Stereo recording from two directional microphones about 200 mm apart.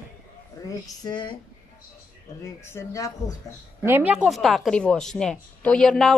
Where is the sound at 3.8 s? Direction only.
10° right (ahead or behind).